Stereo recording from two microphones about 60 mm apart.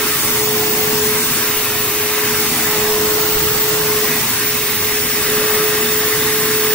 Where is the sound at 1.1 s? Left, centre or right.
Centre.